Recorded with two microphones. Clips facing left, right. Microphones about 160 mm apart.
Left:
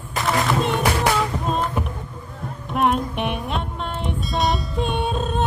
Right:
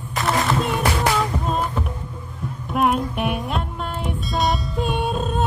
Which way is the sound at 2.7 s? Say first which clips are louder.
Even; centre (ahead or behind).